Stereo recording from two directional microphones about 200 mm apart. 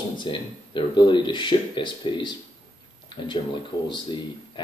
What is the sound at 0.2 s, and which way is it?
Speech, 25° left (ahead or behind).